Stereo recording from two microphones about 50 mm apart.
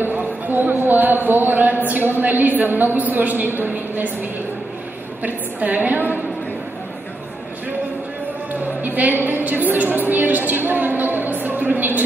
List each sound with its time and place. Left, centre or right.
0.0 s a sound: right
5.2 s a woman's voice: right
8.5 s a woman's voice: right